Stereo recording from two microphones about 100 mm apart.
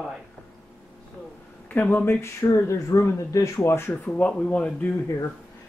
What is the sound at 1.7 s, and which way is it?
Speech, 20° left (ahead or behind).